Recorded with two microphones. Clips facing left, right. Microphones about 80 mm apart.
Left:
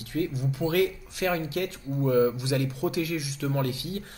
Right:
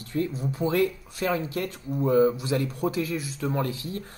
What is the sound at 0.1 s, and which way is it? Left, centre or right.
Speech, right.